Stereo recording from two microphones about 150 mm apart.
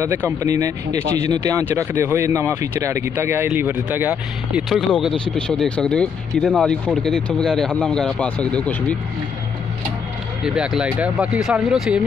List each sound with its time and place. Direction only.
0.0 s speech: 15° right (ahead or behind); by 8.9 s 10° left (ahead or behind)
10.4 s speech: 5° right (ahead or behind)